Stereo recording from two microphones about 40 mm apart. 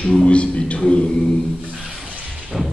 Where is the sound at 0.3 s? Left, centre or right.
Left.